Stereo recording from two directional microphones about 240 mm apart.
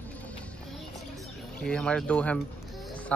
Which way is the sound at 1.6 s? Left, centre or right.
Centre.